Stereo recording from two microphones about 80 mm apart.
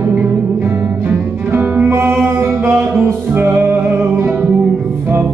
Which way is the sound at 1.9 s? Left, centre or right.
Right.